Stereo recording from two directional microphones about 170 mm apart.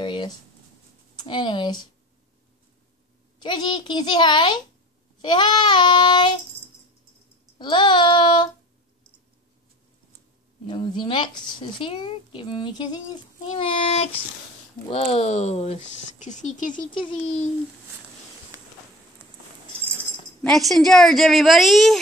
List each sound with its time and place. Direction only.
0.0 s a sound: 25° left (ahead or behind)
1.1 s speech: 25° left (ahead or behind)
3.4 s speech: 25° left (ahead or behind)
7.5 s child singing: 30° left (ahead or behind)
10.7 s speech: 25° left (ahead or behind); by 16.8 s 50° left (ahead or behind)
20.4 s a woman's voice: centre (ahead or behind)